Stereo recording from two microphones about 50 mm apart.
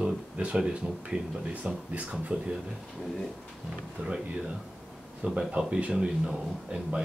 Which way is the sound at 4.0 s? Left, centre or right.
Right.